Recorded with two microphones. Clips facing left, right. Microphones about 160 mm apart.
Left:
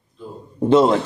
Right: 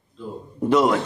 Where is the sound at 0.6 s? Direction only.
30° left (ahead or behind).